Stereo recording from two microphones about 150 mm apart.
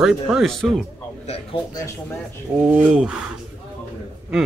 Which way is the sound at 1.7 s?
20° left (ahead or behind).